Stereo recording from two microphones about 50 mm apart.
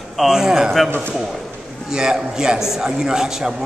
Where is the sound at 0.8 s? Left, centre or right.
Right.